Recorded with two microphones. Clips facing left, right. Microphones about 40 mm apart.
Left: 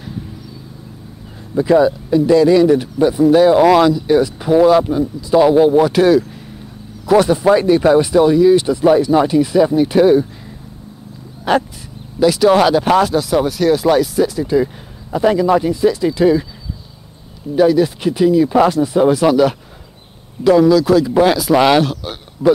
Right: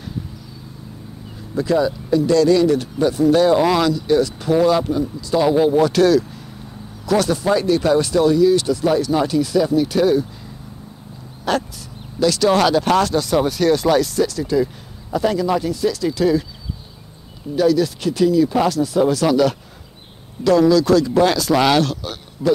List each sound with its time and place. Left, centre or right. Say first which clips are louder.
1.5 s speech: left 6 dB; centre
11.5 s speech: left 5 dB; left
17.6 s speech: left 4 dB; left